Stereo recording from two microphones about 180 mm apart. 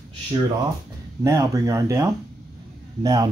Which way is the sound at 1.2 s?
15° right (ahead or behind).